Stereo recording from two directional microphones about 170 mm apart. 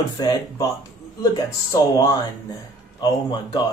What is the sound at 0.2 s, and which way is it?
Speech, 20° left (ahead or behind).